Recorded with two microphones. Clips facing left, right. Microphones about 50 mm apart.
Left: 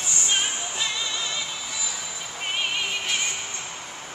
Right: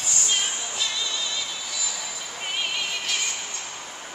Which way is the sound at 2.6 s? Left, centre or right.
Left.